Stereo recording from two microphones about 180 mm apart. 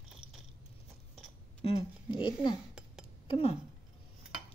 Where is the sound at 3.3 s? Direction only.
30° left (ahead or behind).